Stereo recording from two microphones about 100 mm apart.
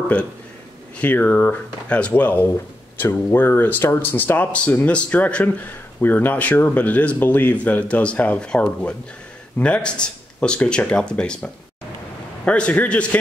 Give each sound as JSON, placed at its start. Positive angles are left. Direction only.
{"t": 1.0, "sound": "speech", "side_deg": 20}